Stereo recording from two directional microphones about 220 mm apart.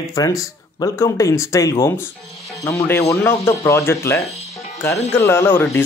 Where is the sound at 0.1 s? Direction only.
15° left (ahead or behind).